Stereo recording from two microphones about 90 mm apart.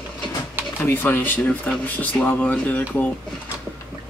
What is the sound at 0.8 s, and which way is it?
Speech, 25° left (ahead or behind).